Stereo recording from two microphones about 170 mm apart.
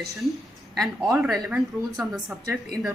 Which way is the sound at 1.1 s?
Centre (ahead or behind).